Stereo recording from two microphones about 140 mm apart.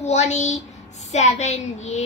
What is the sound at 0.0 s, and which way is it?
A woman's voice, 50° left (ahead or behind).